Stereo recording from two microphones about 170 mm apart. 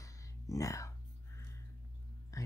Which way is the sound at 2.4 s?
20° left (ahead or behind).